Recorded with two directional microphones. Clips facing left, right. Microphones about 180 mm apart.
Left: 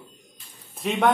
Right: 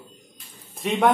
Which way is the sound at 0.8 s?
Centre (ahead or behind).